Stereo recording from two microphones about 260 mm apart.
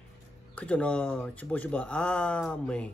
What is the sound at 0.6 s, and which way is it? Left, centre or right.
Speech, centre.